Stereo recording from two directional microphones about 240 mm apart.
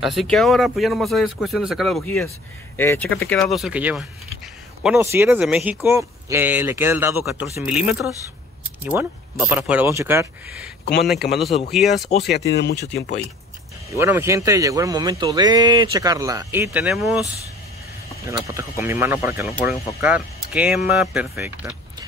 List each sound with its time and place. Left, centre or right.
0.0 s a man's voice: centre
11.7 s speech: centre
12.2 s speech: left
13.9 s a man's voice: centre
18.2 s a man's voice: centre